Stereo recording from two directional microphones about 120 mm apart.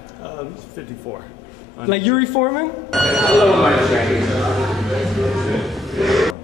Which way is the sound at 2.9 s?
Centre (ahead or behind).